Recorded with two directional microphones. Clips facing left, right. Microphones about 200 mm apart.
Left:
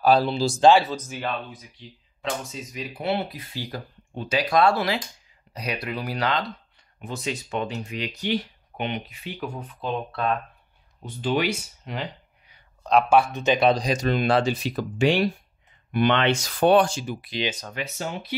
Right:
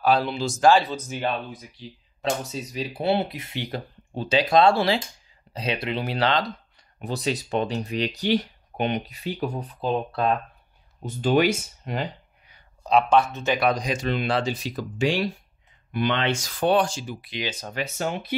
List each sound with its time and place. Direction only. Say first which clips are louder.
0.0 s speech: left 2 dB; 35° left (ahead or behind)
1.0 s speech: right 3 dB; 30° right (ahead or behind)
11.1 s speech: right 4 dB; 45° right (ahead or behind)
13.1 s speech: left 1 dB; 15° left (ahead or behind); by 17.3 s 55° left (ahead or behind)
17.6 s speech: right 2 dB; 30° right (ahead or behind)
17.9 s speech: right 3 dB; 55° right (ahead or behind)